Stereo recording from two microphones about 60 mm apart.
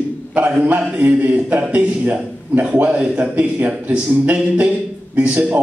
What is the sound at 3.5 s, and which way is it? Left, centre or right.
A man's voice, right.